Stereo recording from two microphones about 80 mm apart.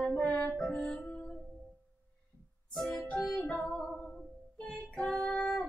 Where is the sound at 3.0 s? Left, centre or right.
Centre.